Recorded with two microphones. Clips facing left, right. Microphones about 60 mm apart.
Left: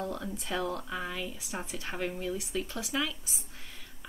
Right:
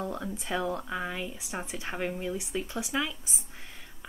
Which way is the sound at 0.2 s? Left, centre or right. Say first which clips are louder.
Right 2 dB; centre.